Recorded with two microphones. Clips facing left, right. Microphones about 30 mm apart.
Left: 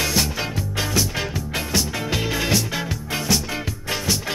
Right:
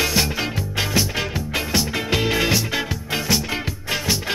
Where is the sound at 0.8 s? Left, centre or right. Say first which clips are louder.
Right 2 dB; centre.